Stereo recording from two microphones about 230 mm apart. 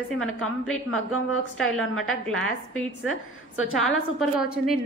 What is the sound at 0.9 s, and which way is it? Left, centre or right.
Speech, left.